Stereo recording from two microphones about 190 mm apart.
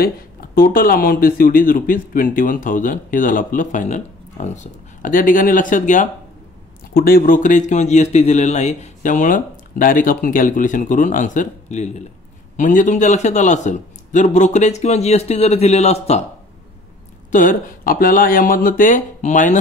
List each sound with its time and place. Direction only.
0.0 s a man's voice: 50° left (ahead or behind); by 16.3 s 35° left (ahead or behind)
17.3 s speech: 45° left (ahead or behind)